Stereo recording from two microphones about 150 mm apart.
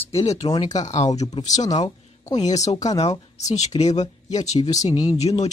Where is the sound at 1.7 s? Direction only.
25° left (ahead or behind).